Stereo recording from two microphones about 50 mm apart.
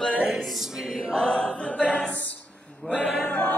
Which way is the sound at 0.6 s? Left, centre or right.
Centre.